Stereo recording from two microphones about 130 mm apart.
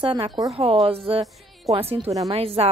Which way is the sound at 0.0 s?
45° right (ahead or behind).